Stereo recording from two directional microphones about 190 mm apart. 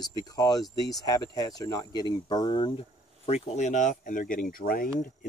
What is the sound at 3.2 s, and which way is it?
Speech, 35° left (ahead or behind).